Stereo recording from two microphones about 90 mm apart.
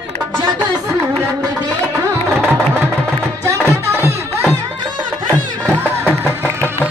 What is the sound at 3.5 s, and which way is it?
Music, 30° right (ahead or behind).